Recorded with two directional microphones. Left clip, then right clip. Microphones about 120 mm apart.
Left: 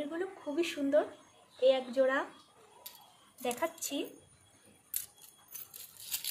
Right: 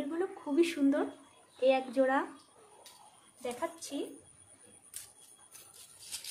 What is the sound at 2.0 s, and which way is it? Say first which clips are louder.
Speech: even; 30° right (ahead or behind).